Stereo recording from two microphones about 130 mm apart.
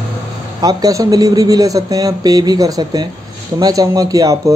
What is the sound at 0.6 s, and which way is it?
Speech, 30° right (ahead or behind).